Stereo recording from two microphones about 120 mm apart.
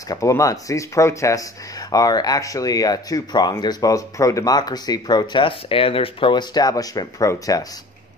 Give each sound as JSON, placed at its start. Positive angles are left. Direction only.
{"t": 0.1, "sound": "speech", "side_deg": 25}